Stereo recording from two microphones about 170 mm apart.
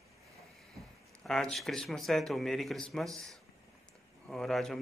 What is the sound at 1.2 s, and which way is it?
Speech, 5° left (ahead or behind).